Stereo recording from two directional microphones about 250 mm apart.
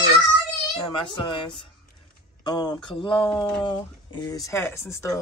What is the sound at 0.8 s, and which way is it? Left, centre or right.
Speech, centre.